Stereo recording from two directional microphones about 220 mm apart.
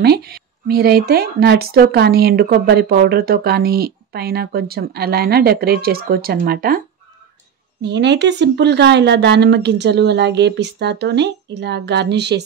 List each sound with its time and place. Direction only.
0.0 s speech: 45° right (ahead or behind)
7.8 s speech: 50° right (ahead or behind)